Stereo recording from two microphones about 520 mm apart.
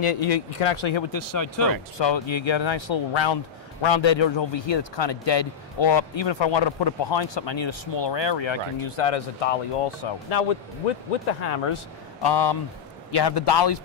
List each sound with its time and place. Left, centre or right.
0.0 s speech: left
1.1 s speech: left
2.0 s a man's voice: left
11.5 s speech: left
12.2 s a man's voice: left